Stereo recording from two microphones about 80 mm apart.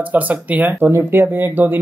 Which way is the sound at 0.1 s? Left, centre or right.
Centre.